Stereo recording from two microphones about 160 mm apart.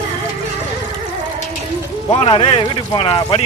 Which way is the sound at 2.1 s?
35° left (ahead or behind).